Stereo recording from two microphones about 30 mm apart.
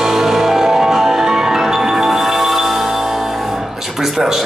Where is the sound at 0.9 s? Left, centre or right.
Centre.